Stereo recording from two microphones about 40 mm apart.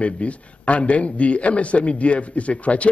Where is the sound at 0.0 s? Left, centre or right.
Left.